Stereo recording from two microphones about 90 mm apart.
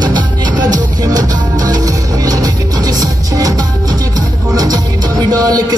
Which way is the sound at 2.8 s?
40° right (ahead or behind).